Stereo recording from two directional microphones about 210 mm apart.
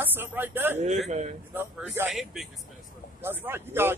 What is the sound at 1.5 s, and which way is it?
Speech, 10° right (ahead or behind).